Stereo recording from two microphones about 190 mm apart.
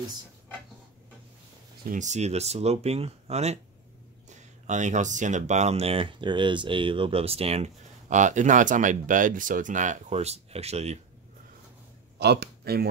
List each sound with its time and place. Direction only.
1.9 s speech: 40° right (ahead or behind)
12.2 s speech: 60° right (ahead or behind)